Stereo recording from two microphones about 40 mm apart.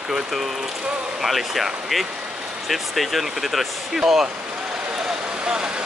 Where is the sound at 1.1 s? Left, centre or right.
Centre.